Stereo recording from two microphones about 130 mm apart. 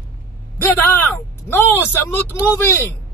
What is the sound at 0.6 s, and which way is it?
A man's voice, 15° left (ahead or behind).